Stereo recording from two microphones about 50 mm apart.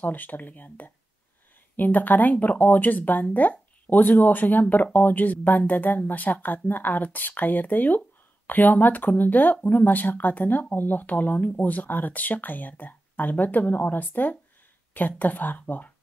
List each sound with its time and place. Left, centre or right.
0.0 s speech: left